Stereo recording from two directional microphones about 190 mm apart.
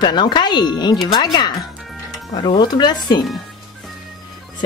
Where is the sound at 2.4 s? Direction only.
25° left (ahead or behind).